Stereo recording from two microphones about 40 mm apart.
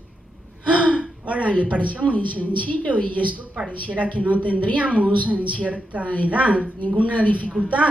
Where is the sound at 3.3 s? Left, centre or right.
Right.